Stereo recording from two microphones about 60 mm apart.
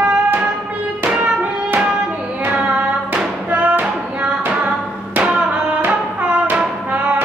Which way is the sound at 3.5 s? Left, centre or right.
Right.